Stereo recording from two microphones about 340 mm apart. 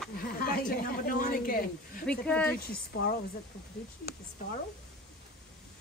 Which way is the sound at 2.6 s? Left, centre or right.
Left.